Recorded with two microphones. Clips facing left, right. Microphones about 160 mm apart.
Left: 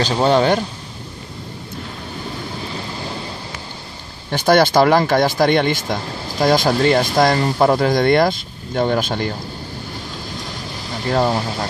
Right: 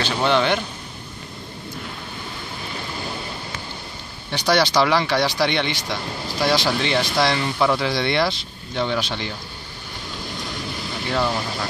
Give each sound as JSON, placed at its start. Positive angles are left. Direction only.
{"t": 0.0, "sound": "speech", "side_deg": 40}
{"t": 4.3, "sound": "speech", "side_deg": 50}
{"t": 11.1, "sound": "speech", "side_deg": 40}